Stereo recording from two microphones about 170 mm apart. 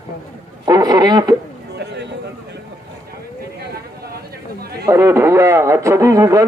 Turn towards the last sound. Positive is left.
turn(degrees=-20)  # may be behind; listen again after turning